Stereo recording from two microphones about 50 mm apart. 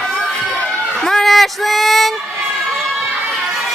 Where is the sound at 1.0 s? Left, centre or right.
Centre.